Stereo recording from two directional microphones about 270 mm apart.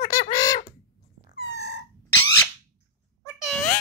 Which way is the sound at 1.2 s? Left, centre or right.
Left.